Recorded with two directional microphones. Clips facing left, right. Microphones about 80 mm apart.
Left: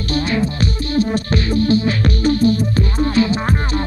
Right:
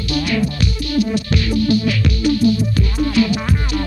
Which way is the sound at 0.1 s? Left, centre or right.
Left.